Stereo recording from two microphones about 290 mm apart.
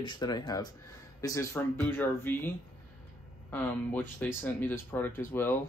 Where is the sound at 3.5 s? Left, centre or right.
Centre.